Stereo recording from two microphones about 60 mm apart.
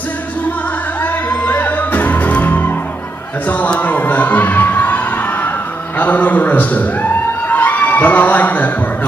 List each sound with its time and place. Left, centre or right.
1.4 s music: left
3.4 s a man's voice: left
3.8 s a sound: left
5.9 s a man's voice: left